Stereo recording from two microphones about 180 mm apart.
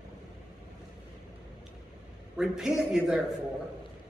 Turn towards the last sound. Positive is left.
turn(degrees=-5)  # may be behind; listen again after turning